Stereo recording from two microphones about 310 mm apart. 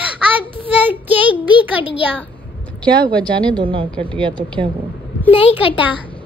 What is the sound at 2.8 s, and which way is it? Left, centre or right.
Speech, centre.